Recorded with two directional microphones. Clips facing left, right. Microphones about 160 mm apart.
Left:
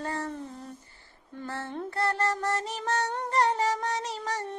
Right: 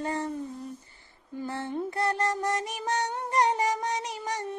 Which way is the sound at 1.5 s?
15° right (ahead or behind).